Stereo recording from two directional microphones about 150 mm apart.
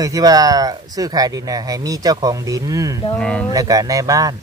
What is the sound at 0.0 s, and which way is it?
Speech, 25° right (ahead or behind).